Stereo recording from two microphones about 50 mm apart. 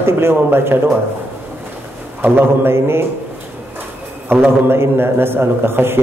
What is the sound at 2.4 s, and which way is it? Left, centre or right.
Speech, right.